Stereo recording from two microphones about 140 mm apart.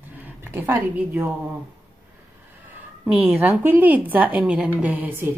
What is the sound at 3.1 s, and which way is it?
A woman's voice, 10° right (ahead or behind).